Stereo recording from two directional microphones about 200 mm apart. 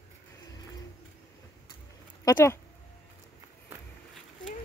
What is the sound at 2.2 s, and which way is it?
Speech, 15° left (ahead or behind).